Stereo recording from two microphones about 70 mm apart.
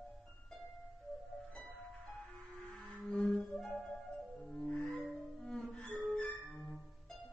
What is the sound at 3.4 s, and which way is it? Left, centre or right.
Music, centre.